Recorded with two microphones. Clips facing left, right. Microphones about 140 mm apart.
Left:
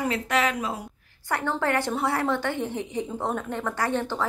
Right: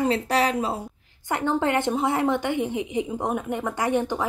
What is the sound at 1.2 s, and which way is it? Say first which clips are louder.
A woman's voice: right 3 dB; 20° right (ahead or behind).